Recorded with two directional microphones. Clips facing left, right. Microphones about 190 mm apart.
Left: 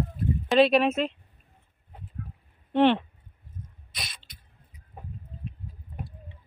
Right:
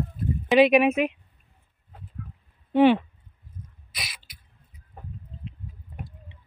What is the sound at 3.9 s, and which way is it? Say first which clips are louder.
Beatboxing: right 2 dB; 5° right (ahead or behind).